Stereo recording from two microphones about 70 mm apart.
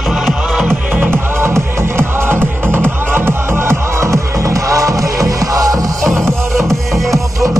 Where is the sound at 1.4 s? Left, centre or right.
Right.